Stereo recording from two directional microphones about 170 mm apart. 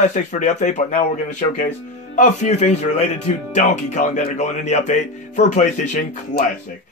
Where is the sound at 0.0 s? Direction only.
45° left (ahead or behind).